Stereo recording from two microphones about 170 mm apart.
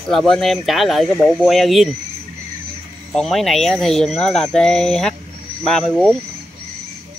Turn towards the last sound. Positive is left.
turn(degrees=5)  # may be behind; listen again after turning